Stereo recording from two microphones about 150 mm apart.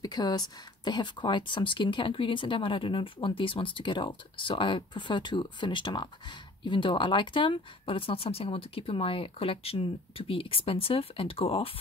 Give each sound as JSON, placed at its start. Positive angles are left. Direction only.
{"t": 0.0, "sound": "speech", "side_deg": 30}